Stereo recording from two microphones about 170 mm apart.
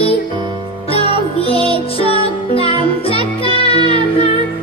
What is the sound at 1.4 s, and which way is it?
Music, 35° left (ahead or behind).